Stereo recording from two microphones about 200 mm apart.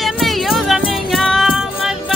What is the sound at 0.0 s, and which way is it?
Music, centre (ahead or behind).